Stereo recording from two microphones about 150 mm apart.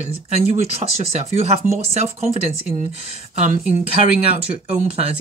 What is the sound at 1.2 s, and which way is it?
Speech, 45° right (ahead or behind).